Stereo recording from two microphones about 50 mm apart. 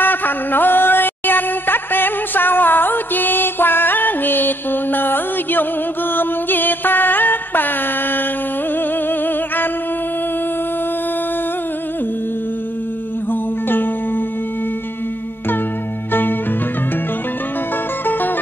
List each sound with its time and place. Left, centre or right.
0.0 s a sound: left
6.1 s music: left
13.3 s music: left
16.1 s music: left